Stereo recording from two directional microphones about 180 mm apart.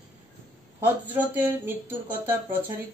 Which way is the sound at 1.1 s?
10° right (ahead or behind).